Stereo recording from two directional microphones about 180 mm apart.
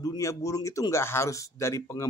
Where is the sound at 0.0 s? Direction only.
20° left (ahead or behind).